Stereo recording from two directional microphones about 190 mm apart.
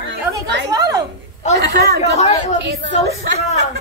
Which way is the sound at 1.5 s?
55° right (ahead or behind).